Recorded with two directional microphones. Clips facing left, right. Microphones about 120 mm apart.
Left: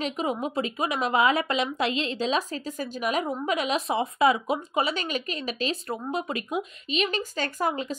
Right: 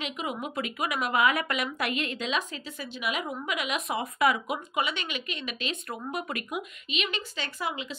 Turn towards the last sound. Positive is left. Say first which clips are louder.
# left 6 dB
turn(degrees=45)  # may be behind; listen again after turning